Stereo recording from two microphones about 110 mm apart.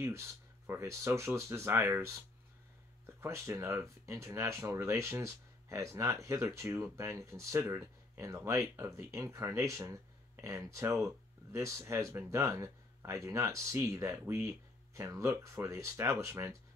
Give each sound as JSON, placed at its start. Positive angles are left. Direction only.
{"t": 0.0, "sound": "speech", "side_deg": -25}
{"t": 3.2, "sound": "speech", "side_deg": -25}